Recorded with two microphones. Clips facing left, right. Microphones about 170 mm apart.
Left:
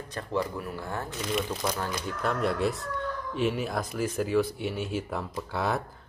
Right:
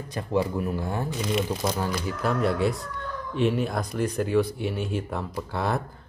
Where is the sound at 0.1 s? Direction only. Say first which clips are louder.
Right 5 dB; 15° right (ahead or behind).